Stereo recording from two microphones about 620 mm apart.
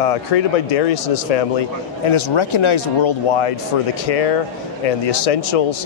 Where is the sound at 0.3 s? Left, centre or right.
Left.